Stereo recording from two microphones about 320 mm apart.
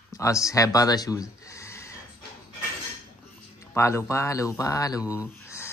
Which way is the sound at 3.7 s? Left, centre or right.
Centre.